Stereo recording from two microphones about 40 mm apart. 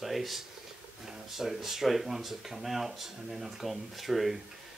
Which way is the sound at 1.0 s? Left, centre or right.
Centre.